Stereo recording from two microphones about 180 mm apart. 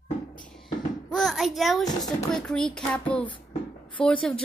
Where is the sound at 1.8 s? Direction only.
20° left (ahead or behind).